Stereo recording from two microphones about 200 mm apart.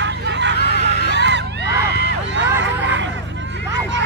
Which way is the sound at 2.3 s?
65° right (ahead or behind).